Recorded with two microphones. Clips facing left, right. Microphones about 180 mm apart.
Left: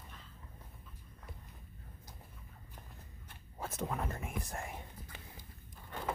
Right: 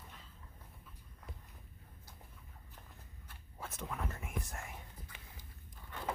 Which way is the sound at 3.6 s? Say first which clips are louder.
Left 5 dB; 40° left (ahead or behind).